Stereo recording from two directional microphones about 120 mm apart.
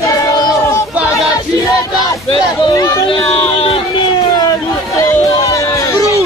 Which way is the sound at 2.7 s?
30° left (ahead or behind).